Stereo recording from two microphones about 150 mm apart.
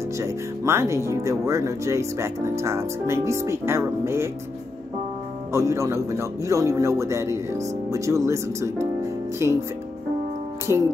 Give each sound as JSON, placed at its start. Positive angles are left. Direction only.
{"t": 0.2, "sound": "speech", "side_deg": -20}
{"t": 5.5, "sound": "speech", "side_deg": -20}
{"t": 10.7, "sound": "speech", "side_deg": -15}